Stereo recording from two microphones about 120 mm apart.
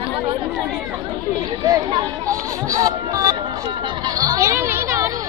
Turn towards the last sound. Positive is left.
turn(degrees=-25)  # may be behind; listen again after turning